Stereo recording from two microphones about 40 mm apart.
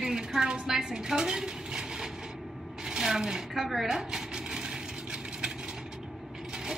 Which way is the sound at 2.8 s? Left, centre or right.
Centre.